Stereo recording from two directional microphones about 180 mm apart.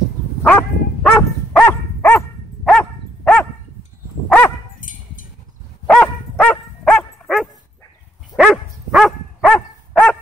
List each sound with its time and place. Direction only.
0.4 s dog: 10° left (ahead or behind)
4.7 s dog: 45° left (ahead or behind)
5.9 s dog: 10° left (ahead or behind)